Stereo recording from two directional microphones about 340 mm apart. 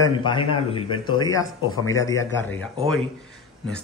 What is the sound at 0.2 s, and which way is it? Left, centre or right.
Speech, centre.